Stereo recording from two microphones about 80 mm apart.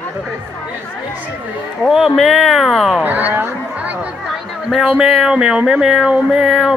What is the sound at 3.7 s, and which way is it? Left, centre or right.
Chatter, centre.